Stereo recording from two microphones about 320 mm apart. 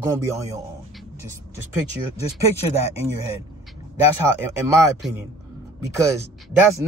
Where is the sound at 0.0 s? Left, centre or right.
Centre.